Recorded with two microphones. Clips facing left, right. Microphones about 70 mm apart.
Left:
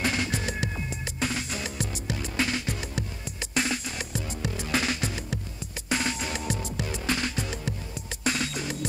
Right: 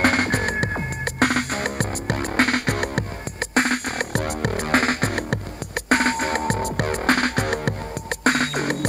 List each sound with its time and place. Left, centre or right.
0.0 s music: right